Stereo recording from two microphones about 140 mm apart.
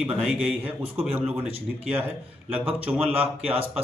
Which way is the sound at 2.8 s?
10° right (ahead or behind).